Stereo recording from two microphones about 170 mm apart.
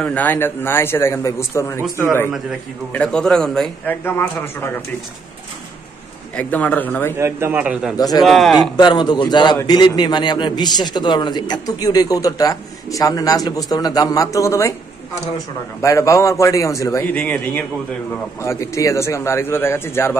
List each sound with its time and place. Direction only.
0.0 s a man's voice: 10° left (ahead or behind)
2.9 s a man's voice: 5° left (ahead or behind)
6.3 s a man's voice: 10° left (ahead or behind)
7.2 s a man's voice: 15° right (ahead or behind); by 8.5 s centre (ahead or behind)
8.7 s a man's voice: 25° left (ahead or behind)
15.8 s a man's voice: 20° left (ahead or behind)